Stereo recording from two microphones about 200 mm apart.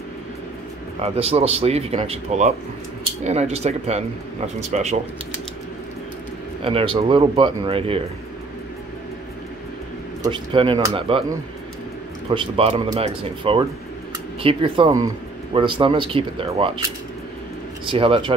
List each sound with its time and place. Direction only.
1.0 s speech: 30° right (ahead or behind)
6.6 s speech: 25° right (ahead or behind)
10.2 s speech: 25° right (ahead or behind)
12.4 s speech: 25° right (ahead or behind)
17.8 s speech: 25° right (ahead or behind)